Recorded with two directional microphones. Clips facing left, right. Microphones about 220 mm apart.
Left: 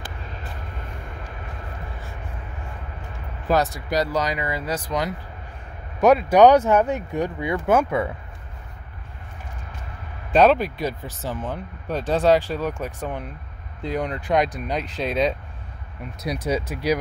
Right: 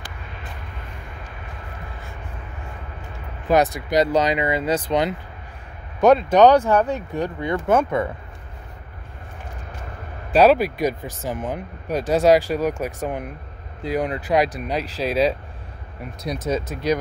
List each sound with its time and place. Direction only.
3.5 s speech: 20° right (ahead or behind)
5.9 s speech: 5° left (ahead or behind)
10.3 s speech: 5° right (ahead or behind)
16.4 s speech: 10° left (ahead or behind)